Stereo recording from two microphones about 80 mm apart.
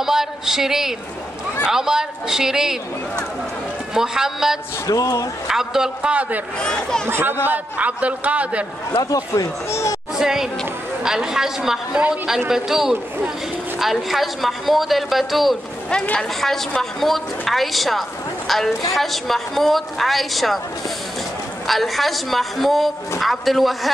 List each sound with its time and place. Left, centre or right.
0.0 s a woman's voice: centre
3.9 s a man's voice: centre
4.8 s speech: left
5.5 s a man's voice: centre
6.6 s speech: centre
7.1 s a man's voice: right
9.1 s speech: left
9.7 s speech: left
10.1 s a woman's voice: centre
15.9 s a woman's voice: centre
21.6 s a woman's voice: centre